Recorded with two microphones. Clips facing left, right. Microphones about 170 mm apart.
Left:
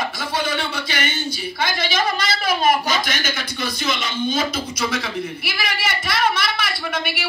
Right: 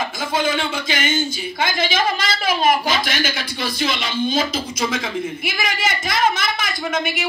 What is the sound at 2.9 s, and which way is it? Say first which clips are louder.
Speech: right 2 dB; 50° left (ahead or behind).